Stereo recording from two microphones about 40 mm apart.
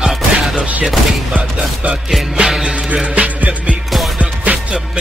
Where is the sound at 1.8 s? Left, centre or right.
Right.